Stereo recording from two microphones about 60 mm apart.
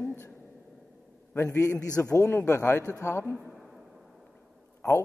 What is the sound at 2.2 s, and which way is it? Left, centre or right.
Speech, left.